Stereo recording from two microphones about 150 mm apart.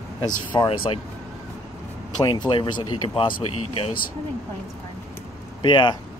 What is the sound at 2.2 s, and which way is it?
Speech, 30° left (ahead or behind).